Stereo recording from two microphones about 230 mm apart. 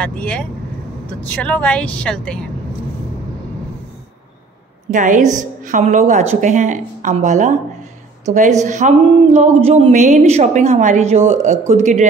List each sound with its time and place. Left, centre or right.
0.0 s a woman's voice: centre
4.9 s a woman's voice: right